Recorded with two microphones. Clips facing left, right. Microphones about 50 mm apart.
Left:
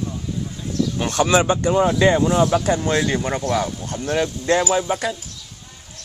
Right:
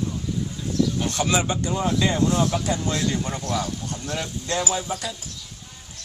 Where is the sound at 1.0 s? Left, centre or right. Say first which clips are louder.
Left 6 dB; left.